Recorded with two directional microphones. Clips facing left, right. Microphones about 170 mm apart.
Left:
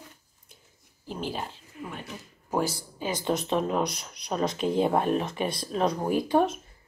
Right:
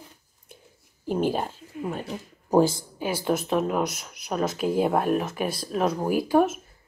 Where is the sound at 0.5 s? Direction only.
55° right (ahead or behind).